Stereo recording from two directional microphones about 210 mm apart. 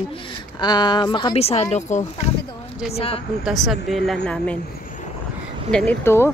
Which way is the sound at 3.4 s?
Centre (ahead or behind).